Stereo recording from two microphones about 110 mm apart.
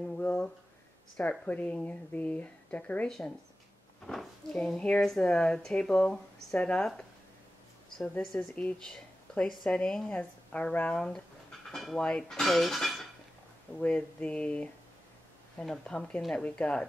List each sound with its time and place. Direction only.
0.2 s a sound: 10° left (ahead or behind)
1.1 s speech: 10° left (ahead or behind)
8.2 s speech: 5° left (ahead or behind)